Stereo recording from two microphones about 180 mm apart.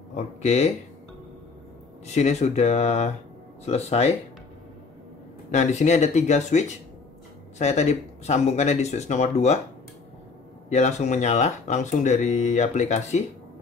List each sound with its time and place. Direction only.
0.1 s speech: 40° left (ahead or behind)
2.1 s speech: 40° left (ahead or behind)
5.5 s speech: 40° left (ahead or behind)
10.7 s speech: 40° left (ahead or behind)